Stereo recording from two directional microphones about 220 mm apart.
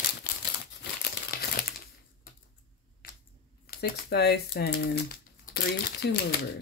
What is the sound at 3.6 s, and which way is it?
Speech, 45° left (ahead or behind).